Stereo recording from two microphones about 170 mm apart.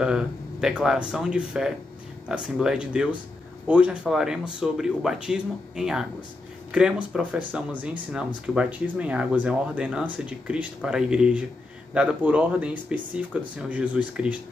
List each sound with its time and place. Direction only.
0.0 s speech: 5° right (ahead or behind)